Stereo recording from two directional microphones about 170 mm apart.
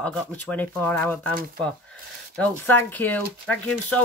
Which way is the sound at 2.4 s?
10° left (ahead or behind).